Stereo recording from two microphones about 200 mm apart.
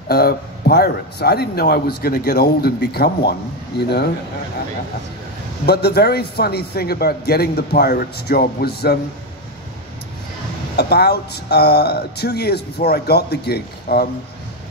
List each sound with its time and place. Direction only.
0.1 s a man's voice: 50° left (ahead or behind)
5.7 s a man's voice: 55° left (ahead or behind)
10.8 s a man's voice: 55° left (ahead or behind)